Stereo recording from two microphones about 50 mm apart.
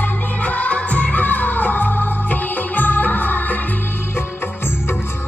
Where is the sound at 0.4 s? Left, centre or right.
Left.